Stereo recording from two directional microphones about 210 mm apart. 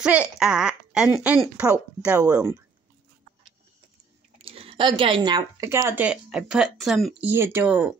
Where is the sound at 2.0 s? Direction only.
15° right (ahead or behind).